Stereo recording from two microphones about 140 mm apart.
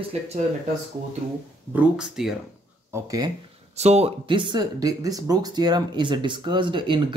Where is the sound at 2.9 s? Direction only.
25° right (ahead or behind).